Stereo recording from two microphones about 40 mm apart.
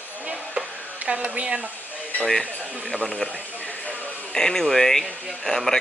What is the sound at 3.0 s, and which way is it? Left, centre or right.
Speech, centre.